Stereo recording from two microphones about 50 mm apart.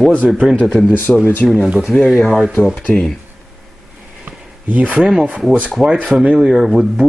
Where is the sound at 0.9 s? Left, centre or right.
Left.